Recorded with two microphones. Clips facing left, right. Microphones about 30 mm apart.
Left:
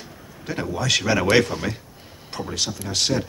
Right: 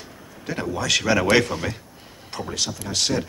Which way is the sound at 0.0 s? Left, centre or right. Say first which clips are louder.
Right 2 dB; centre.